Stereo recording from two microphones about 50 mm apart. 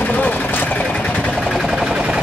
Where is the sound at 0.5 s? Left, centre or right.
Left.